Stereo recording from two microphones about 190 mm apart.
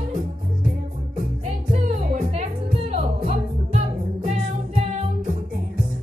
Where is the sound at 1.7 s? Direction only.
35° right (ahead or behind).